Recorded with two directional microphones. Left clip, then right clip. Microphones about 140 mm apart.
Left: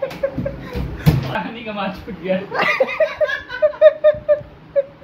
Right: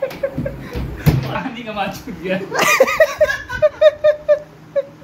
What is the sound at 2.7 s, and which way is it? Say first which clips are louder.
Laughter: right 5 dB; 40° right (ahead or behind).